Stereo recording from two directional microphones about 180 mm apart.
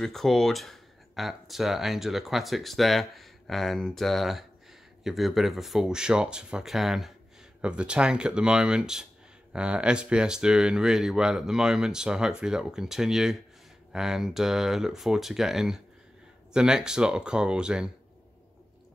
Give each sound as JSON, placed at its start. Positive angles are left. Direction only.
{"t": 0.0, "sound": "speech", "side_deg": 0}